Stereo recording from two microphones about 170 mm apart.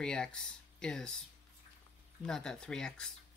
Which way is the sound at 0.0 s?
5° left (ahead or behind).